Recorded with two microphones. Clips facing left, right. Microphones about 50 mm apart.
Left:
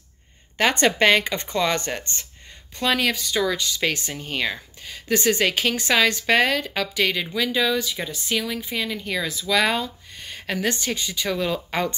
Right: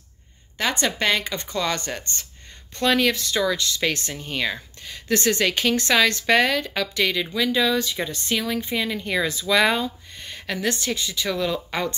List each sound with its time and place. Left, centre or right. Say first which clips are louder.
0.6 s speech: left 5 dB; left
2.8 s speech: right 2 dB; centre
11.0 s speech: right 1 dB; left
11.2 s speech: even; centre